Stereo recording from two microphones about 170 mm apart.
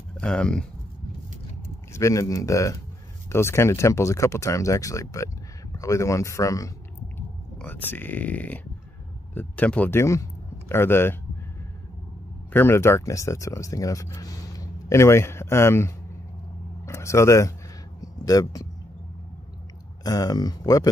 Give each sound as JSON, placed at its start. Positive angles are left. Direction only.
{"t": 0.2, "sound": "speech", "side_deg": 5}
{"t": 1.9, "sound": "speech", "side_deg": 15}
{"t": 12.5, "sound": "speech", "side_deg": 15}
{"t": 20.0, "sound": "speech", "side_deg": 20}